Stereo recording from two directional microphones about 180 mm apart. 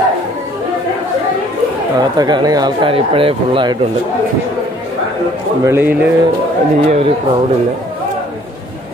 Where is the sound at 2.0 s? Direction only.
25° right (ahead or behind).